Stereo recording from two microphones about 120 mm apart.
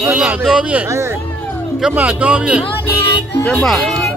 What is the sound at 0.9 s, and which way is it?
Speech, 25° right (ahead or behind).